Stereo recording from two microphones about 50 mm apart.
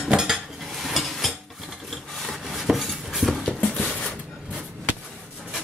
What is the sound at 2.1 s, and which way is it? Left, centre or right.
Rub, centre.